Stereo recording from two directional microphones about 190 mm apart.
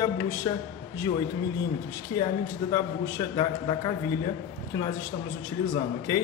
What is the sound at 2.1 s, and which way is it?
A man's voice, 20° left (ahead or behind).